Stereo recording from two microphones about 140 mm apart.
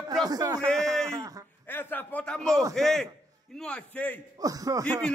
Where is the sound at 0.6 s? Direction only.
5° left (ahead or behind).